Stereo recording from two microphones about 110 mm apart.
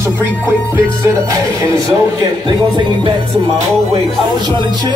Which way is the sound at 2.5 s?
45° right (ahead or behind).